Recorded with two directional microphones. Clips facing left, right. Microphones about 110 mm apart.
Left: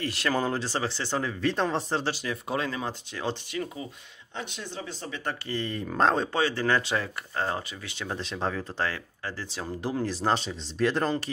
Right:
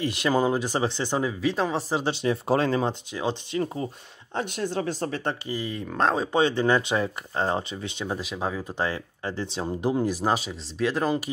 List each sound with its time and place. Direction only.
0.0 s speech: 20° right (ahead or behind)
1.4 s speech: 5° right (ahead or behind)
2.0 s speech: 20° right (ahead or behind)
2.4 s speech: 35° right (ahead or behind)
2.9 s speech: 15° right (ahead or behind)
3.5 s speech: 40° right (ahead or behind)
4.4 s speech: 55° right (ahead or behind)
5.5 s speech: 5° right (ahead or behind)
6.3 s speech: 20° right (ahead or behind)